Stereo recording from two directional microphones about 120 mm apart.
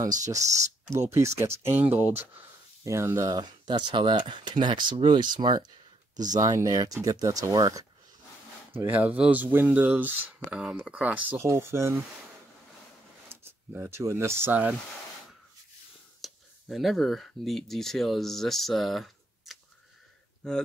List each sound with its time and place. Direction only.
1.1 s speech: 25° right (ahead or behind)
8.7 s speech: 15° right (ahead or behind)
13.3 s speech: 20° right (ahead or behind)
16.2 s speech: centre (ahead or behind)